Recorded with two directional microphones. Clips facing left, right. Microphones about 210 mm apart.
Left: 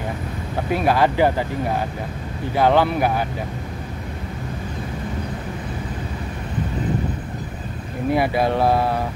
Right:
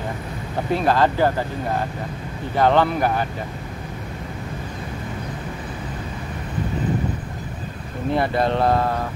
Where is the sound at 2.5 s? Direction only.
10° left (ahead or behind).